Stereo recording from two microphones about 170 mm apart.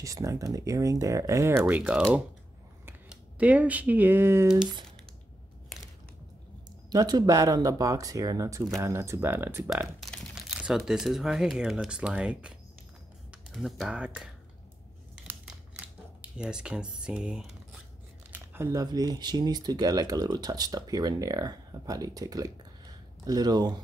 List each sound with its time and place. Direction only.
0.0 s speech: 20° right (ahead or behind)
6.9 s speech: 25° right (ahead or behind); by 14.3 s 5° right (ahead or behind)
15.1 s mechanisms: 5° right (ahead or behind)
18.3 s speech: 15° right (ahead or behind)